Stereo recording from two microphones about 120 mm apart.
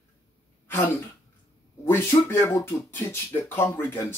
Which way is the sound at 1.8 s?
20° left (ahead or behind).